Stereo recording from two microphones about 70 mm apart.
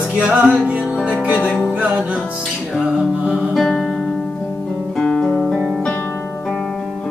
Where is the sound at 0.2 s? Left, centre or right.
Centre.